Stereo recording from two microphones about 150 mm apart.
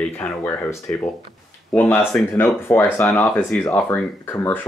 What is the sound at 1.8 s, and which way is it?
Speech, 10° left (ahead or behind).